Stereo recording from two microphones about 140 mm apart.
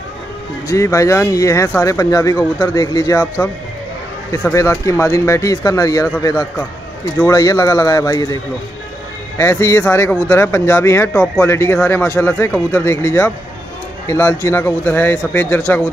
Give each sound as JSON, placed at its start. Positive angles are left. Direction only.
{"t": 0.7, "sound": "speech", "side_deg": 20}
{"t": 4.3, "sound": "speech", "side_deg": 20}
{"t": 9.4, "sound": "speech", "side_deg": 20}